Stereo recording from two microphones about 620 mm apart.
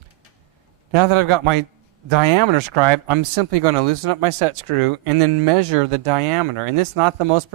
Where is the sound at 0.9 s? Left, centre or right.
Right.